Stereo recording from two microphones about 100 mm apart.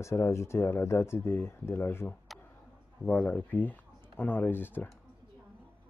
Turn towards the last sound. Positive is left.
turn(degrees=20)  # may be behind; listen again after turning